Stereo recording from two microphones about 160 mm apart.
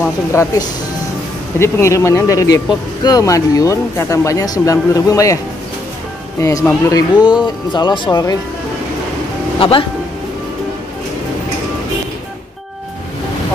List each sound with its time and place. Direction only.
0.3 s speech: 20° left (ahead or behind)
6.4 s speech: 20° left (ahead or behind)
7.2 s speech: 5° right (ahead or behind)
7.7 s speech: 30° left (ahead or behind)
9.6 s speech: 35° left (ahead or behind)